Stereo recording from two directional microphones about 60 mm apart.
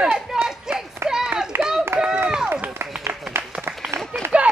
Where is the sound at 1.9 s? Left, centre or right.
Right.